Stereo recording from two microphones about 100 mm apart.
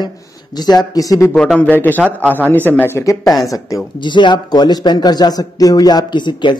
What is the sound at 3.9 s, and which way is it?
Speech, 50° left (ahead or behind).